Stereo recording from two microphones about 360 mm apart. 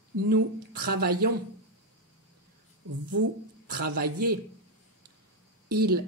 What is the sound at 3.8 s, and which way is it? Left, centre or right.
Speech, right.